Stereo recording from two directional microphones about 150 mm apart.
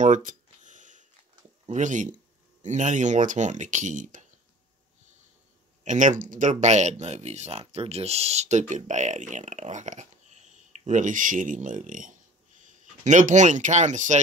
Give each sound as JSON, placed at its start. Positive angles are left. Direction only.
{"t": 0.0, "sound": "a sound", "side_deg": -60}
{"t": 1.7, "sound": "speech", "side_deg": -55}
{"t": 5.9, "sound": "speech", "side_deg": -55}